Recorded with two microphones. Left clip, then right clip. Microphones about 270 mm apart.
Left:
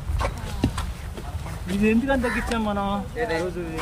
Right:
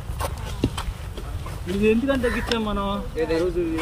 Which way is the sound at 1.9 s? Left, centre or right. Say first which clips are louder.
Right 2 dB; centre.